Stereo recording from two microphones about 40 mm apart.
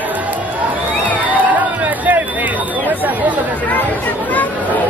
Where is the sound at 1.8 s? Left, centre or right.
Right.